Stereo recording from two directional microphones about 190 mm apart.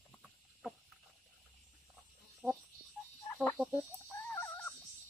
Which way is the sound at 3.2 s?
10° left (ahead or behind).